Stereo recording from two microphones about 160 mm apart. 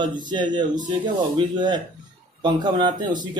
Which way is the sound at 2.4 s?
25° right (ahead or behind).